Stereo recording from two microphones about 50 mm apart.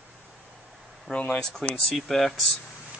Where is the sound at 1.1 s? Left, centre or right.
Centre.